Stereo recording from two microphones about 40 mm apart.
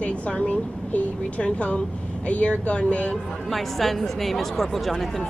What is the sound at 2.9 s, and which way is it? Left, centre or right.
Speech, left.